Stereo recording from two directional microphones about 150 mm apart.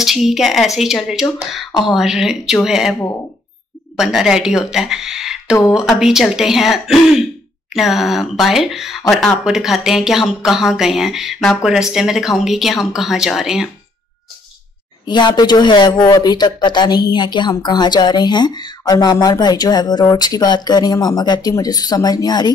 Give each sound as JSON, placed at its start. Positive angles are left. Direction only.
{"t": 0.0, "sound": "speech", "side_deg": 0}
{"t": 15.0, "sound": "speech", "side_deg": 30}